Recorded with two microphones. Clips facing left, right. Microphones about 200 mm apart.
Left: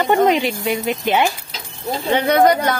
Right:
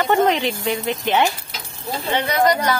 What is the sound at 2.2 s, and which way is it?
Speech, 55° left (ahead or behind).